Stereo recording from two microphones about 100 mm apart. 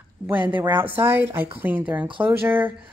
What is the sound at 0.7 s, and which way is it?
A woman's voice, 20° right (ahead or behind).